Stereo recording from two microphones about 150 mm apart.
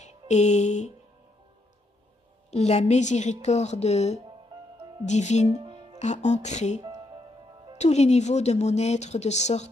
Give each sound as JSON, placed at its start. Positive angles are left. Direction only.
{"t": 0.0, "sound": "music", "side_deg": 50}
{"t": 2.5, "sound": "speech", "side_deg": 45}
{"t": 5.5, "sound": "music", "side_deg": -30}
{"t": 5.9, "sound": "speech", "side_deg": 50}